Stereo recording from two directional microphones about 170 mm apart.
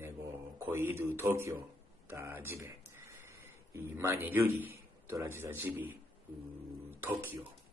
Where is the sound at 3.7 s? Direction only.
15° right (ahead or behind).